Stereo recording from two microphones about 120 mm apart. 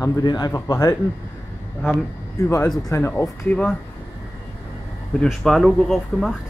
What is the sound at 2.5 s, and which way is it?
Speech, 30° left (ahead or behind).